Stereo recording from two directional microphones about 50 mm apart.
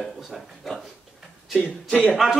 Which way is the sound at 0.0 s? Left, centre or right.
Centre.